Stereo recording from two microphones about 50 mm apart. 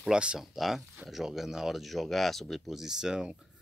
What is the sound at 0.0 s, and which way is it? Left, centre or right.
Speech, centre.